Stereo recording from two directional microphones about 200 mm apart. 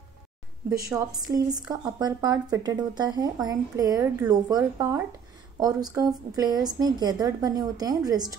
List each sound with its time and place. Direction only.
0.7 s a woman's voice: 10° right (ahead or behind)
1.2 s speech: 20° right (ahead or behind)